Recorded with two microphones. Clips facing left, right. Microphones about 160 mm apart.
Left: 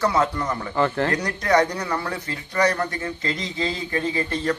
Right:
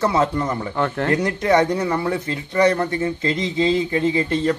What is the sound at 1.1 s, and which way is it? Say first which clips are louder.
A man's voice: right 3 dB; 25° right (ahead or behind).